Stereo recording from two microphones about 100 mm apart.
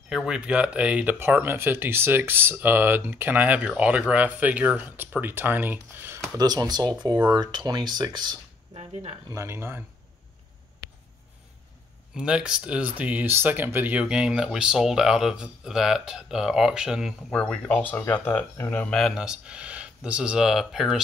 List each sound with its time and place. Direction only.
0.1 s speech: 5° right (ahead or behind); by 6.2 s 20° right (ahead or behind)
6.3 s speech: 40° right (ahead or behind)
9.3 s speech: 25° right (ahead or behind)
12.2 s speech: 10° right (ahead or behind)
17.3 s speech: 10° left (ahead or behind)
17.9 s speech: 20° left (ahead or behind)
18.9 s speech: centre (ahead or behind)